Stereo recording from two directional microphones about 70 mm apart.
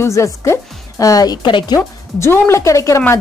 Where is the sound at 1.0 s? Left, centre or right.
Left.